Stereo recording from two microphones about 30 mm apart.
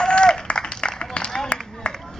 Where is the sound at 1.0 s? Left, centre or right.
Left.